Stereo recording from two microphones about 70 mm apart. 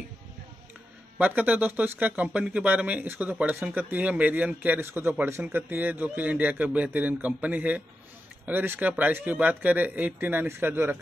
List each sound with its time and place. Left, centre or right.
1.1 s a man's voice: right
4.7 s a man's voice: right
10.4 s a man's voice: right